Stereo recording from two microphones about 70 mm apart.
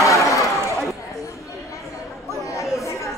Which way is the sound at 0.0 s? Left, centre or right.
Left.